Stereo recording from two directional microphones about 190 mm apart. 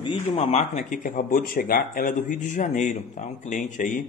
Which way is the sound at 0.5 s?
40° left (ahead or behind).